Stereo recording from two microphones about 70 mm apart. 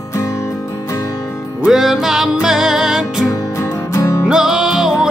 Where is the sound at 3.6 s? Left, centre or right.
Left.